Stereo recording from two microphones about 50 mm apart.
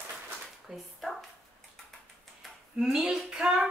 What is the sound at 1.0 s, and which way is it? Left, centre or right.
Bow-wow, centre.